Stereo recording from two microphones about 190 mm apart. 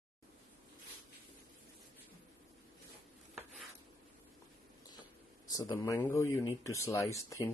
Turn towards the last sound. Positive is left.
turn(degrees=15)  # may be behind; listen again after turning